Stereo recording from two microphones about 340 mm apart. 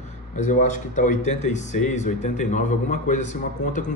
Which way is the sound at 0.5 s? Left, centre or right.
Left.